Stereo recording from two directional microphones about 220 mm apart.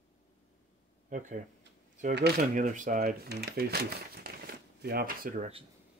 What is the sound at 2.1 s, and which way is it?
Speech, 45° right (ahead or behind).